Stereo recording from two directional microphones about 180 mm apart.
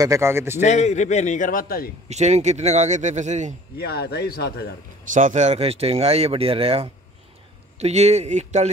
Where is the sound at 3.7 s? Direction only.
65° left (ahead or behind).